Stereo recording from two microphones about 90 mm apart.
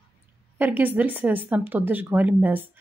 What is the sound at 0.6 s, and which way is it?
Speech, 20° right (ahead or behind).